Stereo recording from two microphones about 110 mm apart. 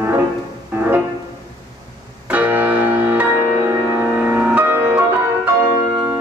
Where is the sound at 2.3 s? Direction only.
15° right (ahead or behind).